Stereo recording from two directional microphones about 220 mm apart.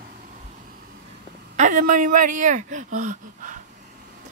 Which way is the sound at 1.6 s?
35° right (ahead or behind).